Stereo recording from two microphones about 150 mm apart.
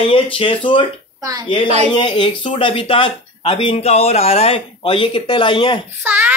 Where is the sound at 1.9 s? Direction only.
30° left (ahead or behind).